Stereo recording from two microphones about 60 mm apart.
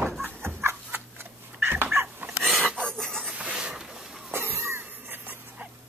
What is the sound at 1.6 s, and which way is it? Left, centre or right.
Dog, right.